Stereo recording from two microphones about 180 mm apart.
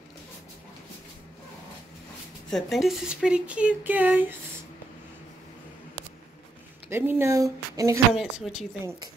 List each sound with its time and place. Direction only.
2.5 s speech: centre (ahead or behind)
6.9 s speech: 15° right (ahead or behind)
8.1 s speech: centre (ahead or behind)